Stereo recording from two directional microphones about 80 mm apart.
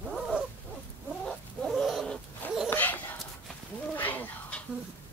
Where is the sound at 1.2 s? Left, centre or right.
Centre.